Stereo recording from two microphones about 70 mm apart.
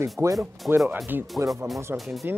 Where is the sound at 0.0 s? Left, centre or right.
Right.